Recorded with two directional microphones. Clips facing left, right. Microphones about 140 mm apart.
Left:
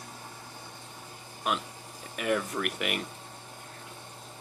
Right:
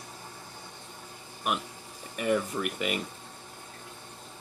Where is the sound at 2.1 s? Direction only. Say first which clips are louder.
Right 2 dB; centre (ahead or behind).